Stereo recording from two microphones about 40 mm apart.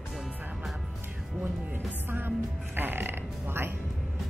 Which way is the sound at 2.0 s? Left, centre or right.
Right.